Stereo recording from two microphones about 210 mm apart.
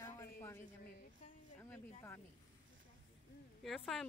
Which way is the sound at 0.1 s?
15° left (ahead or behind).